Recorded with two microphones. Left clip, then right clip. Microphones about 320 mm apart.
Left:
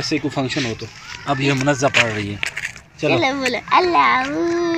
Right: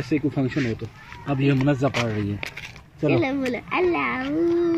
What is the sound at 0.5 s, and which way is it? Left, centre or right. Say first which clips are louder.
Speech: left 4 dB; centre.